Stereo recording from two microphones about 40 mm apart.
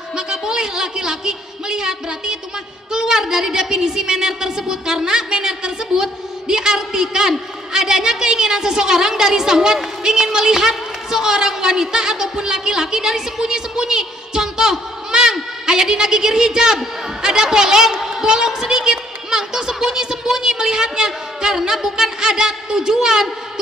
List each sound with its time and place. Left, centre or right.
0.1 s a woman's voice: centre